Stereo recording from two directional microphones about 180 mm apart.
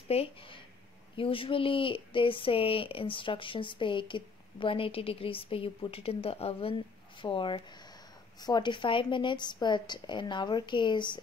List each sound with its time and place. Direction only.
0.1 s speech: 30° left (ahead or behind)